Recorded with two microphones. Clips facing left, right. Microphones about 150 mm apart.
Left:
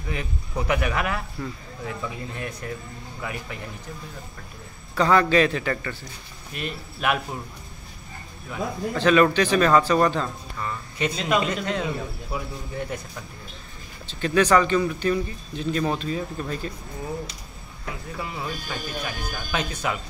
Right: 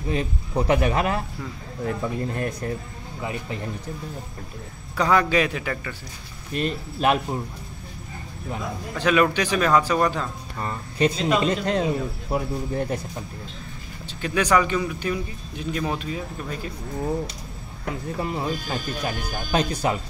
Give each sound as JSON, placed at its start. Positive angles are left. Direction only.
{"t": 0.1, "sound": "speech", "side_deg": -30}
{"t": 1.9, "sound": "speech", "side_deg": -45}
{"t": 3.2, "sound": "speech", "side_deg": -25}
{"t": 4.9, "sound": "speech", "side_deg": -10}
{"t": 6.5, "sound": "speech", "side_deg": -35}
{"t": 8.9, "sound": "speech", "side_deg": -10}
{"t": 10.6, "sound": "speech", "side_deg": -35}
{"t": 14.0, "sound": "speech", "side_deg": -10}
{"t": 18.1, "sound": "speech", "side_deg": -40}